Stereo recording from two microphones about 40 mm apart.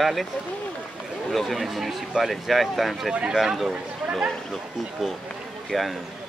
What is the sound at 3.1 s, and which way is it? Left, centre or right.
Speech, right.